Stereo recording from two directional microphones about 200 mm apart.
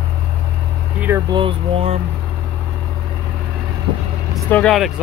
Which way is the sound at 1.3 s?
25° right (ahead or behind).